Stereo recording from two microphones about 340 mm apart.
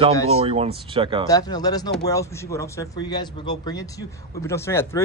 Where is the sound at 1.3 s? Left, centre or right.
Centre.